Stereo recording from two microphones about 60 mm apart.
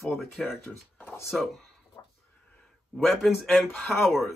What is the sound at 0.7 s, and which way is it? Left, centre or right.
Speech, left.